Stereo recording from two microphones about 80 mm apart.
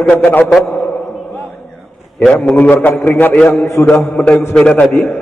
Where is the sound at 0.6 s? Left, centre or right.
Left.